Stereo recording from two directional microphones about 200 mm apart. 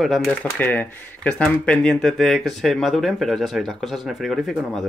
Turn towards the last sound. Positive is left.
turn(degrees=0)  # may be behind; listen again after turning